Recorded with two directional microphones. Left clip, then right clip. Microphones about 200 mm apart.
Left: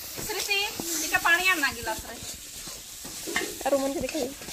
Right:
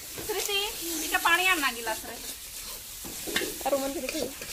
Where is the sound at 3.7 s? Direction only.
35° left (ahead or behind).